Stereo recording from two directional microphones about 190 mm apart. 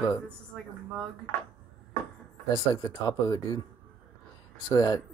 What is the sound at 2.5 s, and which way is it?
Speech, 20° left (ahead or behind).